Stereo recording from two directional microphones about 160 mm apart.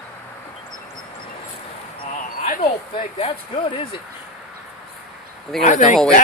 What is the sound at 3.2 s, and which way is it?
Speech, 35° left (ahead or behind).